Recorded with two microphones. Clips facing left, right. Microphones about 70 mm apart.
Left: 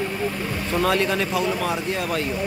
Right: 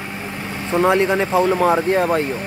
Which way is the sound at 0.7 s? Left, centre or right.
Right.